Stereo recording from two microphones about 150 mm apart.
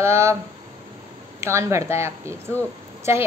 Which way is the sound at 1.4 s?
20° right (ahead or behind).